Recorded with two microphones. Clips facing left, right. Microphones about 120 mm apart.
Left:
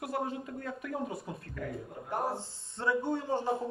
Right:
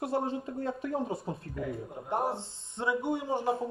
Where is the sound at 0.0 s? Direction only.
30° right (ahead or behind).